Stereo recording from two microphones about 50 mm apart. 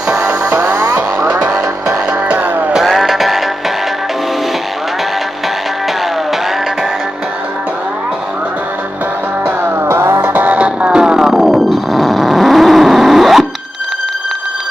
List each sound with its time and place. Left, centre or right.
0.1 s music: right
0.5 s music: right
1.9 s music: right
2.4 s music: right
2.8 s music: centre
9.8 s music: right
10.2 s music: right
10.9 s music: centre